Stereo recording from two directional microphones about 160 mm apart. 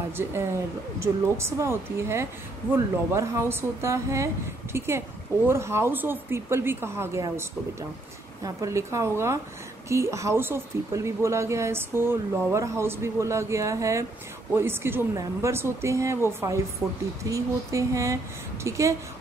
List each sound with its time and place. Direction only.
0.2 s a woman's voice: 15° right (ahead or behind)